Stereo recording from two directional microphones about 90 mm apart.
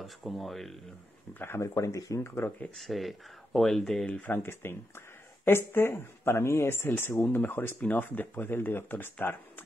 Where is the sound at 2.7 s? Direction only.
Centre (ahead or behind).